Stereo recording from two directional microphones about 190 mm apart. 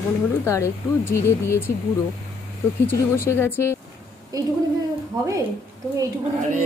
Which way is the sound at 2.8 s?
15° left (ahead or behind).